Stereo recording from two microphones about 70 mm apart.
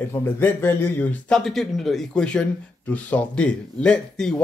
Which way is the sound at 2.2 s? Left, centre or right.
Centre.